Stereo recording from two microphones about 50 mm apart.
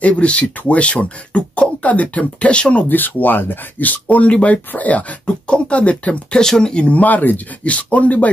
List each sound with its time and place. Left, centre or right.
0.0 s speech: left
2.9 s speech: left
6.4 s speech: centre; by 8.3 s left